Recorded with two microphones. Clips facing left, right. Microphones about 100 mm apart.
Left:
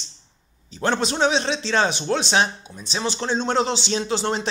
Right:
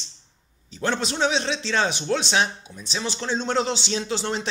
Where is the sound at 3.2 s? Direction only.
30° left (ahead or behind).